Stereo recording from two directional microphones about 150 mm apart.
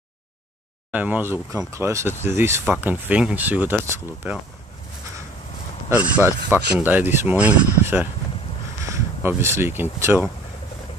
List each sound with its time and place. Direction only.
0.9 s speech: 10° right (ahead or behind)
5.9 s speech: 10° right (ahead or behind)
8.8 s a sound: 20° right (ahead or behind)
9.4 s speech: 15° right (ahead or behind)